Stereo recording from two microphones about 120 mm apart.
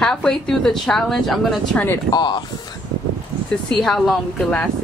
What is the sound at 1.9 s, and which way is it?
Speech, 35° left (ahead or behind).